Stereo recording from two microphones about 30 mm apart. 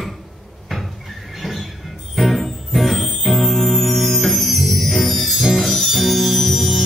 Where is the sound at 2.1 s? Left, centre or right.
Centre.